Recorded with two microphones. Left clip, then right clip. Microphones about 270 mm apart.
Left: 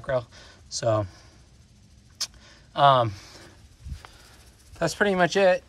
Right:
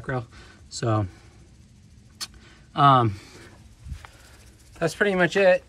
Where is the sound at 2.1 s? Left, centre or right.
Centre.